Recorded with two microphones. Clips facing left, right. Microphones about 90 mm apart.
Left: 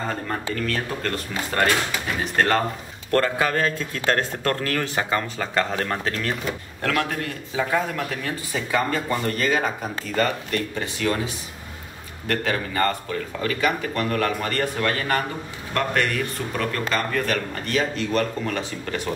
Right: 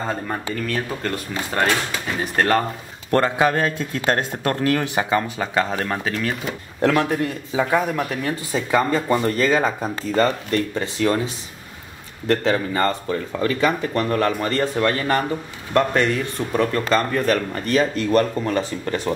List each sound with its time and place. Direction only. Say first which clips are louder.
0.1 s speech: right 2 dB; 5° right (ahead or behind)
3.1 s a man's voice: right 3 dB; 20° right (ahead or behind)
6.8 s a man's voice: right 7 dB; 20° right (ahead or behind)
12.3 s a man's voice: right 5 dB; 25° right (ahead or behind)